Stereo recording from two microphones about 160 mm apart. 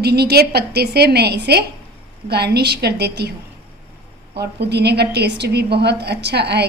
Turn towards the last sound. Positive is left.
turn(degrees=-90)